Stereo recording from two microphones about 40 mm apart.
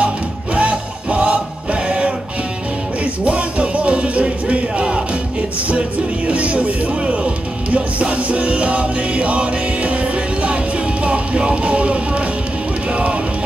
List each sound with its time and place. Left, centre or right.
0.6 s music: right